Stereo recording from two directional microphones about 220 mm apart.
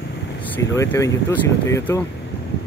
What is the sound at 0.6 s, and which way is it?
Speech, 15° left (ahead or behind).